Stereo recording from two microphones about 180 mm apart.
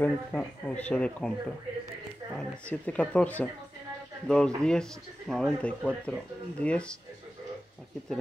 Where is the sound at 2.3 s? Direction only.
5° left (ahead or behind).